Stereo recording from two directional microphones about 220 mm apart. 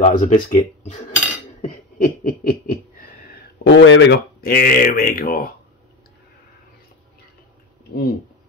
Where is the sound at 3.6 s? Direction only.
55° left (ahead or behind).